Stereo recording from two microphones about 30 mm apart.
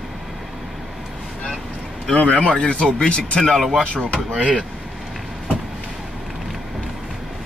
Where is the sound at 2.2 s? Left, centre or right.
Left.